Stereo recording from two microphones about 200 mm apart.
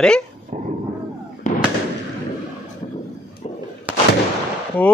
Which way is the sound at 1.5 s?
40° left (ahead or behind).